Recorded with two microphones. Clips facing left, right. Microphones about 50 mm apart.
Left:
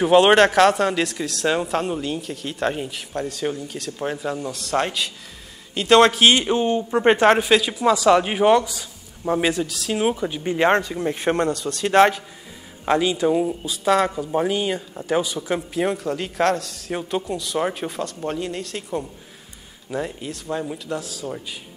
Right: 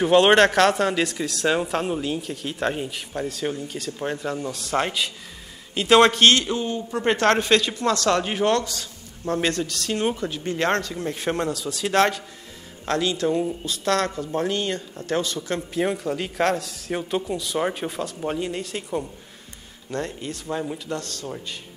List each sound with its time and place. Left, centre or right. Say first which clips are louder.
0.0 s speech: left 2 dB; centre
6.4 s speech: left 6 dB; left
7.2 s speech: left 3 dB; centre
11.4 s speech: left 3 dB; centre
11.9 s speech: left 5 dB; centre